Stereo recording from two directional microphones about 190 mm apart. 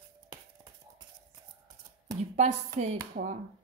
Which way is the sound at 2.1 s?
40° right (ahead or behind).